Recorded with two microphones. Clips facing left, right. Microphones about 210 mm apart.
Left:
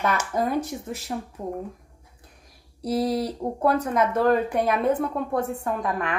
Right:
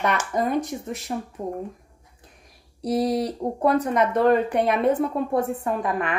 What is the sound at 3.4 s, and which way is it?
A woman's voice, 5° right (ahead or behind).